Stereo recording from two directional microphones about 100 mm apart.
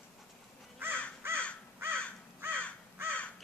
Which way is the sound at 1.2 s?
20° right (ahead or behind).